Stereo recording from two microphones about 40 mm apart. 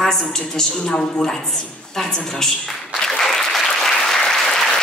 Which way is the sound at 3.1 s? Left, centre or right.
Centre.